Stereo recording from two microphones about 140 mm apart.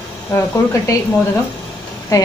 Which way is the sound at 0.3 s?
20° left (ahead or behind).